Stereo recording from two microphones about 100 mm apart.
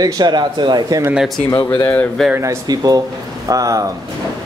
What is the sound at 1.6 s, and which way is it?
Speech, 45° left (ahead or behind).